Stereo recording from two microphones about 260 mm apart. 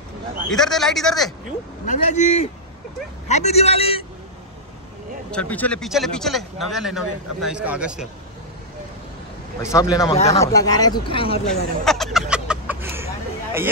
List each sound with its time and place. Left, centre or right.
0.5 s speech: centre
1.9 s speech: left
5.3 s speech: centre
9.6 s speech: centre
11.8 s a sound: centre